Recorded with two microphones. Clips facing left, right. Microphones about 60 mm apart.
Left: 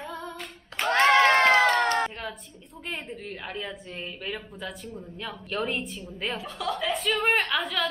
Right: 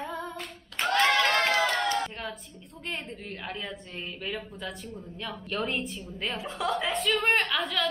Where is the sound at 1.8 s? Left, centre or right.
Left.